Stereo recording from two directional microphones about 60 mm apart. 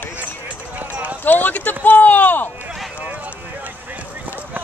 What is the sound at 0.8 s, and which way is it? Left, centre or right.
Run, right.